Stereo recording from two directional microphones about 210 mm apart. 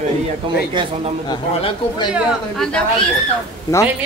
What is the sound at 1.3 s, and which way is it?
Speech, 20° left (ahead or behind).